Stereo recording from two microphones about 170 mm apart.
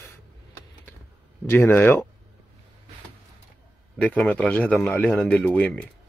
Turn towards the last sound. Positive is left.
turn(degrees=10)  # may be behind; listen again after turning